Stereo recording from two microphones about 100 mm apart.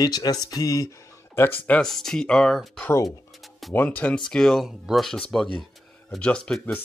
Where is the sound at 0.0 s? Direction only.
40° left (ahead or behind).